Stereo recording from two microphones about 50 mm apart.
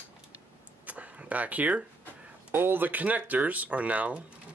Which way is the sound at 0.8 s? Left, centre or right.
Right.